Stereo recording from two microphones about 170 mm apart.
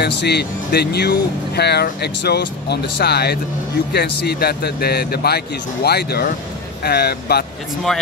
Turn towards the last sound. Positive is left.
turn(degrees=70)  # may be behind; listen again after turning